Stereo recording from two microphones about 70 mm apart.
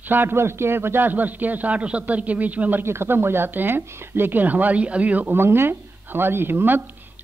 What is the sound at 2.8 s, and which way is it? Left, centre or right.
Speech, right.